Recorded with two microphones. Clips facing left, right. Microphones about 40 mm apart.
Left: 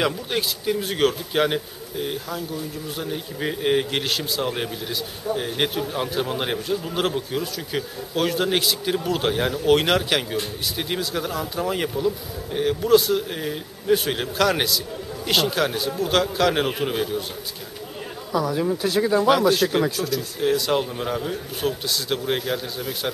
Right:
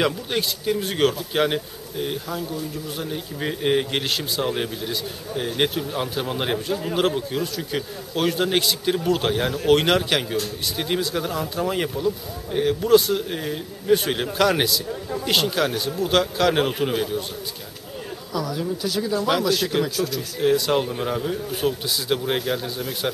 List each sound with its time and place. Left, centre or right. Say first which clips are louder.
0.0 s a man's voice: right 1 dB; centre
18.3 s speech: left 4 dB; left
19.6 s speech: left 3 dB; centre
20.1 s a man's voice: right 1 dB; centre